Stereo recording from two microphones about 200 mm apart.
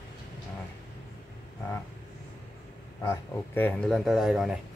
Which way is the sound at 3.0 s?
10° left (ahead or behind).